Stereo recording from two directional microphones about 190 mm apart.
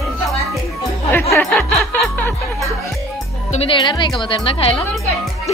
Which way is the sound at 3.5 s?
30° left (ahead or behind).